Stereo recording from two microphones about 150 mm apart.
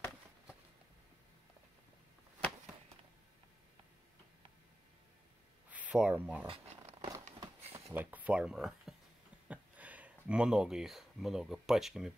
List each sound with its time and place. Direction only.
5.7 s speech: 10° right (ahead or behind)
6.4 s a sound: 40° right (ahead or behind)
7.9 s speech: 10° right (ahead or behind)